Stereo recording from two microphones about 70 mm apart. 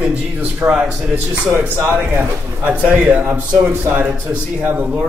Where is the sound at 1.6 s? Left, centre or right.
Right.